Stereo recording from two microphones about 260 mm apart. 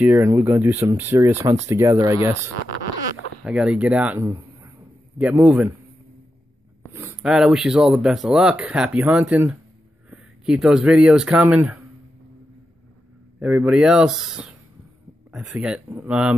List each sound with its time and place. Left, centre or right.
0.0 s speech: centre
3.4 s speech: centre
6.9 s speech: centre
13.4 s speech: centre